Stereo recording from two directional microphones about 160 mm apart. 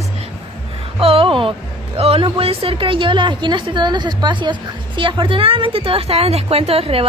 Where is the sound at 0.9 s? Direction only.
35° right (ahead or behind).